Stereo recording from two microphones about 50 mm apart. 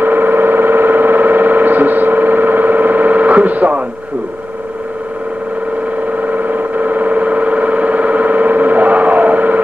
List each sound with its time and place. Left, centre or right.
0.0 s synthesizer: right
6.2 s synthesizer: right